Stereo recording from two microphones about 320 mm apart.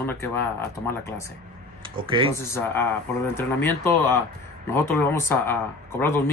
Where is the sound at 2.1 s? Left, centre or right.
Centre.